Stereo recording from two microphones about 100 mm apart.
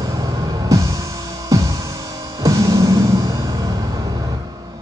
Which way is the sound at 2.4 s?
35° right (ahead or behind).